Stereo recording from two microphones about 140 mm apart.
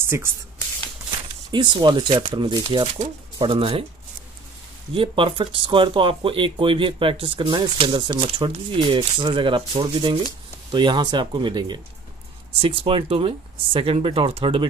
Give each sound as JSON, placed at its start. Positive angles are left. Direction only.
{"t": 0.0, "sound": "speech", "side_deg": -15}
{"t": 1.5, "sound": "speech", "side_deg": -35}
{"t": 4.9, "sound": "speech", "side_deg": -40}